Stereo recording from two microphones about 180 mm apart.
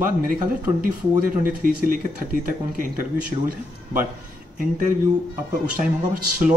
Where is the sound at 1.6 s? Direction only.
50° right (ahead or behind).